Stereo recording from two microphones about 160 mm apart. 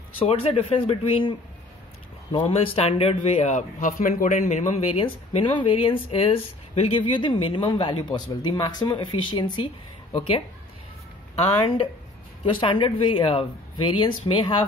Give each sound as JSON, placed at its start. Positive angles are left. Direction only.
{"t": 0.2, "sound": "speech", "side_deg": 35}
{"t": 2.3, "sound": "speech", "side_deg": 35}
{"t": 12.5, "sound": "speech", "side_deg": 30}